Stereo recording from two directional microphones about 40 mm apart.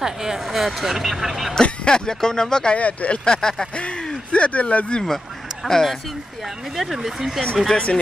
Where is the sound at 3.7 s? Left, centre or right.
Left.